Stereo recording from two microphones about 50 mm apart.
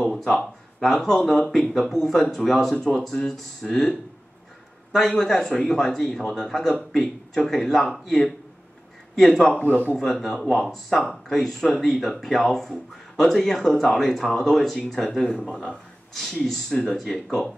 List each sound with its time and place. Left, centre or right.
0.0 s a sound: centre
0.7 s speech: centre
5.2 s a man's voice: centre
9.6 s a man's voice: left
9.9 s speech: centre
15.0 s speech: centre